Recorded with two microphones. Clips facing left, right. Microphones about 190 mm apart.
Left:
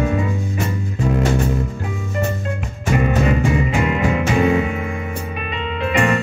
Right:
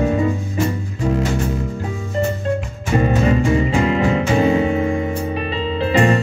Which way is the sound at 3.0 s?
35° right (ahead or behind).